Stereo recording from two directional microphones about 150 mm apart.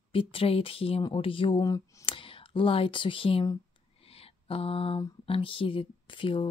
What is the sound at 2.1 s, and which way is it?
Speech, 35° left (ahead or behind).